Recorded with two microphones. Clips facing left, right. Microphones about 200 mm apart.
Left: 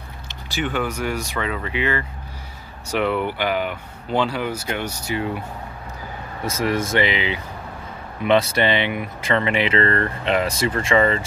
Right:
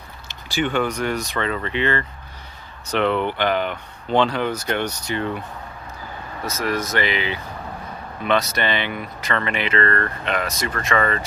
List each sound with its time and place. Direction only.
0.5 s speech: centre (ahead or behind)
6.4 s speech: 25° left (ahead or behind)